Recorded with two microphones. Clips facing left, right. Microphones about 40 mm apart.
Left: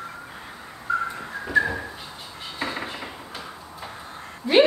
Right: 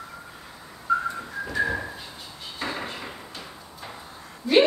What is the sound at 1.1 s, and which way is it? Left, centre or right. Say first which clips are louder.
Whistling: left 5 dB; left.